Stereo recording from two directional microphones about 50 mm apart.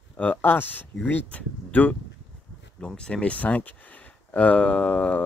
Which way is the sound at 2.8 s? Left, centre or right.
Centre.